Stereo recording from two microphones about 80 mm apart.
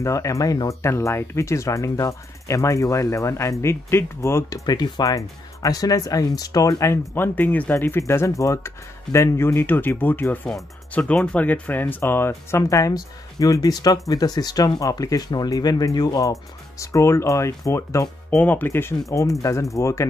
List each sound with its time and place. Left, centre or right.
0.0 s speech: left
0.8 s speech: left
4.6 s speech: left
7.3 s speech: left
12.0 s speech: left
18.4 s speech: left